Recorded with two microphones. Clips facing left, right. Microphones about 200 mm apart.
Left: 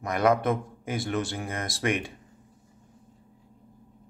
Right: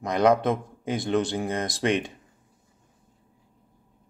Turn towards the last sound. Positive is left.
turn(degrees=-20)  # may be behind; listen again after turning